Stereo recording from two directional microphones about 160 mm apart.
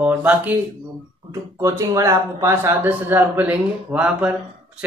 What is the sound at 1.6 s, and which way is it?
A man's voice, 20° right (ahead or behind).